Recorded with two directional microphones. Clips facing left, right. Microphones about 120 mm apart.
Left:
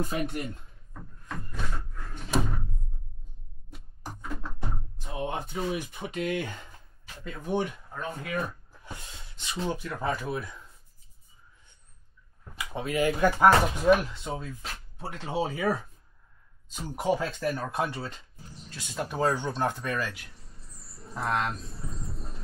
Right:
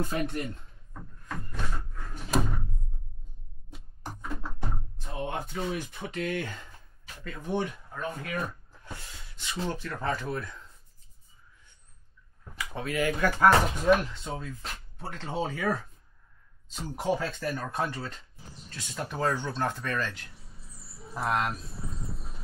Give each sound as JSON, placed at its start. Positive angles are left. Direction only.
{"t": 0.0, "sound": "speech", "side_deg": 15}
{"t": 0.9, "sound": "door", "side_deg": -5}
{"t": 3.7, "sound": "a sound", "side_deg": 0}
{"t": 5.0, "sound": "music", "side_deg": 15}
{"t": 5.6, "sound": "speech", "side_deg": 10}
{"t": 7.2, "sound": "a sound", "side_deg": 15}
{"t": 9.7, "sound": "speech", "side_deg": 10}
{"t": 12.5, "sound": "speech", "side_deg": 15}
{"t": 13.5, "sound": "speech", "side_deg": 5}
{"t": 17.0, "sound": "speech", "side_deg": 5}
{"t": 19.9, "sound": "a sound", "side_deg": 5}